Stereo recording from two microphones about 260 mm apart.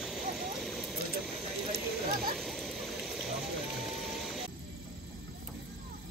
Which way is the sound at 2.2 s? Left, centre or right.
Centre.